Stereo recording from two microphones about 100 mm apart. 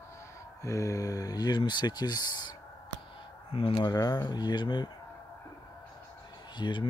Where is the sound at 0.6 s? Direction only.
30° left (ahead or behind).